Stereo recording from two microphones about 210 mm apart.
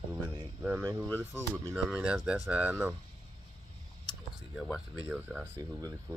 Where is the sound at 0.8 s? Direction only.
15° right (ahead or behind).